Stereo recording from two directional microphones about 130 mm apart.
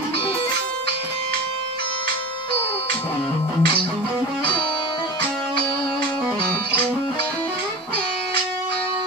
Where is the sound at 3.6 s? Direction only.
40° left (ahead or behind).